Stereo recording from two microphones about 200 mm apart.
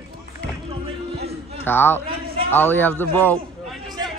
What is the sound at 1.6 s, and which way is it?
A man's voice, 10° left (ahead or behind).